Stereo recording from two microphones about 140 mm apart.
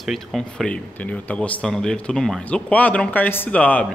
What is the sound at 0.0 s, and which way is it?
Speech, centre (ahead or behind).